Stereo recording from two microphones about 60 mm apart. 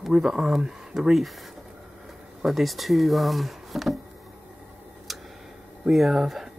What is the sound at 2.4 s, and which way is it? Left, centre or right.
Speech, centre.